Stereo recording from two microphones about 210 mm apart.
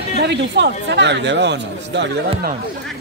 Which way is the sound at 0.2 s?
55° right (ahead or behind).